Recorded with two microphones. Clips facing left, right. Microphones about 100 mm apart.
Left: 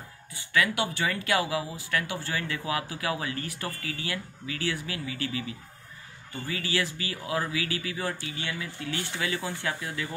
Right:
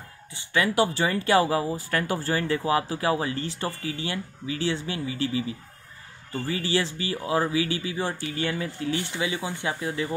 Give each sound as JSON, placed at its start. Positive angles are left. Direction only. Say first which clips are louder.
{"t": 0.3, "sound": "speech", "louder": "right 2 dB", "side_deg": -25}
{"t": 8.3, "sound": "speech", "louder": "right 7 dB", "side_deg": -40}
{"t": 8.9, "sound": "speech", "louder": "even", "side_deg": -15}